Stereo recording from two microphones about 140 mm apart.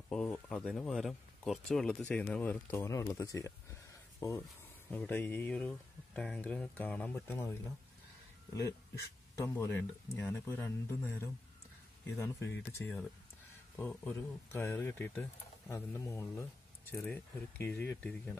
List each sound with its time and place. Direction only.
0.1 s speech: 5° left (ahead or behind)
9.3 s speech: 20° left (ahead or behind)